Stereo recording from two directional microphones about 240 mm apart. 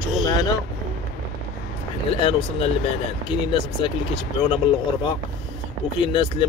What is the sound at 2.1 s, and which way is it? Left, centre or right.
A man's voice, left.